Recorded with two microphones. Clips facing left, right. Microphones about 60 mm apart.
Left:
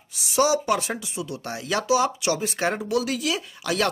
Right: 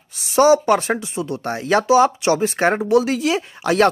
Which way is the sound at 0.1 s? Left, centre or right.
Right.